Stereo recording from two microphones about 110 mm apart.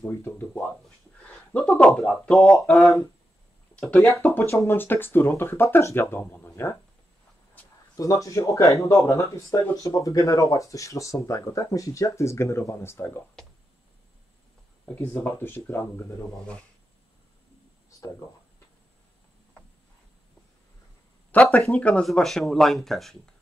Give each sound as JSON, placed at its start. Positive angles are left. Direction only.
{"t": 0.0, "sound": "speech", "side_deg": 25}
{"t": 1.5, "sound": "speech", "side_deg": 5}
{"t": 4.0, "sound": "speech", "side_deg": 25}
{"t": 7.9, "sound": "speech", "side_deg": 30}
{"t": 14.9, "sound": "speech", "side_deg": 20}
{"t": 21.3, "sound": "speech", "side_deg": 15}